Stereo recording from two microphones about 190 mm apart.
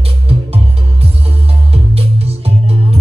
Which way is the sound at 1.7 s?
30° right (ahead or behind).